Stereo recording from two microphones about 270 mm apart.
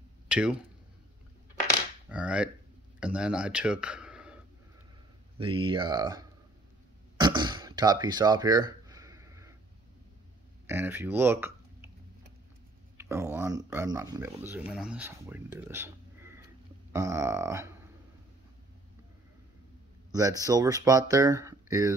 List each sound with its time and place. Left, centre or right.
0.3 s speech: centre
2.0 s speech: centre
5.4 s speech: centre
7.2 s throat clearing: centre
10.7 s speech: centre
12.9 s speech: centre
20.1 s a sound: centre
20.4 s speech: centre